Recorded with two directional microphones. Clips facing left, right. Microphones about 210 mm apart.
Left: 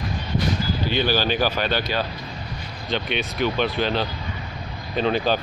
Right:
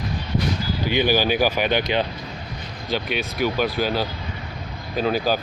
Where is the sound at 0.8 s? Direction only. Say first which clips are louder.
Right 3 dB; 15° right (ahead or behind).